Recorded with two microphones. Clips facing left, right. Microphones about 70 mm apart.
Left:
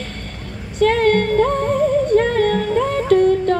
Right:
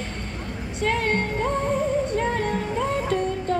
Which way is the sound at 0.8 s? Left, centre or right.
Left.